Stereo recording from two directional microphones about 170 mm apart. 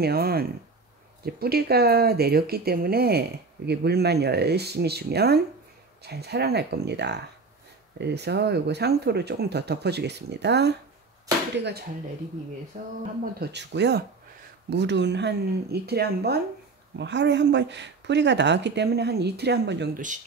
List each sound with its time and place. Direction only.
0.0 s speech: 65° right (ahead or behind)
12.7 s speech: 45° right (ahead or behind)
13.2 s speech: 75° right (ahead or behind)
16.9 s speech: 90° right